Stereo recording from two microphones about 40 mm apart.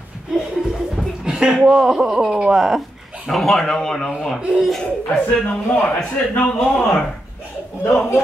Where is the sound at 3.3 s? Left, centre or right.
Centre.